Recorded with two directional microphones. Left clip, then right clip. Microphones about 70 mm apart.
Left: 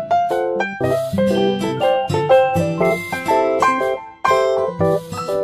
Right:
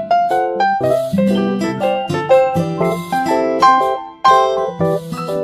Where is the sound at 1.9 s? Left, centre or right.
Centre.